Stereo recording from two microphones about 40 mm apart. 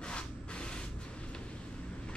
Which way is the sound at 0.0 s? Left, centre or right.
Left.